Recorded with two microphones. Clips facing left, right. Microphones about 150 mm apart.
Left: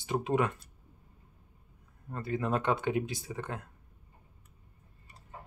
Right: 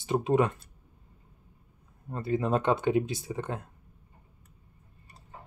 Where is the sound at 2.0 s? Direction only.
20° right (ahead or behind).